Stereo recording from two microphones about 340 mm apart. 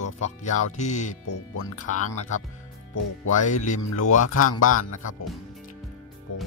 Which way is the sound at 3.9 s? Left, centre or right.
Left.